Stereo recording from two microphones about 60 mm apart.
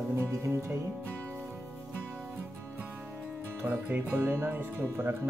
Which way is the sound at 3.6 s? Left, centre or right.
Right.